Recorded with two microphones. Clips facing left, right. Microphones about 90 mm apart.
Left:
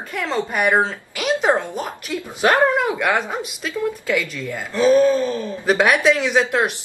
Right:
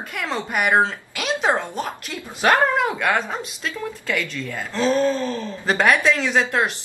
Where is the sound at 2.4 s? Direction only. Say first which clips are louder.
Left 1 dB; 10° left (ahead or behind).